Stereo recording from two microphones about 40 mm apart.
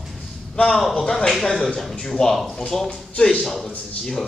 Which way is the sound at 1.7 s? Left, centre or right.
Centre.